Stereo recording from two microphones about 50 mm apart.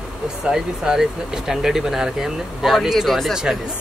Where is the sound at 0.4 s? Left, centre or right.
Centre.